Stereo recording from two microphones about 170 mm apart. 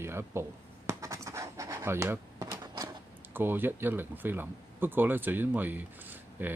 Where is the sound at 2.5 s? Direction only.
25° right (ahead or behind).